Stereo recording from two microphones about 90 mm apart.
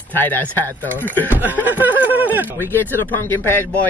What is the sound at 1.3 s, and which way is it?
Speech, 20° right (ahead or behind).